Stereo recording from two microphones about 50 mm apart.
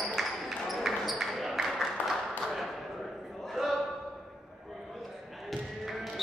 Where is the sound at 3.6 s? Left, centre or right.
Centre.